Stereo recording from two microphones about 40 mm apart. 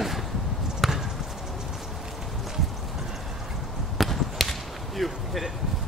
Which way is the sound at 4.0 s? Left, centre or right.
Centre.